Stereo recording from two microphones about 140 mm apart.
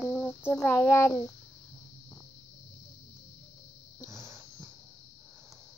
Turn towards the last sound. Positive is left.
turn(degrees=25)  # may be behind; listen again after turning